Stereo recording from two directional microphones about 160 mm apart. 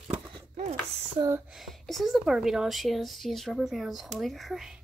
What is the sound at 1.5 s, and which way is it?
Speech, centre (ahead or behind).